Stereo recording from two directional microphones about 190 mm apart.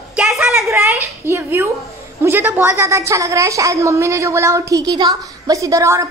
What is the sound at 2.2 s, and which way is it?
A woman's voice, 10° right (ahead or behind).